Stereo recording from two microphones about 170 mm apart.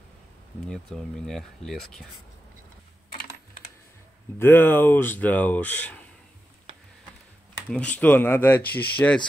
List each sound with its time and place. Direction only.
0.7 s speech: 5° left (ahead or behind)
4.4 s speech: 10° left (ahead or behind)
7.7 s speech: 10° left (ahead or behind)